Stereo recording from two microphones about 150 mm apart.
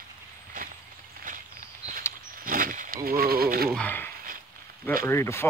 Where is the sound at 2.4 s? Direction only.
65° right (ahead or behind); by 3.6 s 85° right.